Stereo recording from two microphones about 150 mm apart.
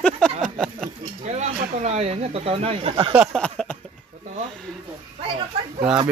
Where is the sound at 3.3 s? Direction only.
5° left (ahead or behind).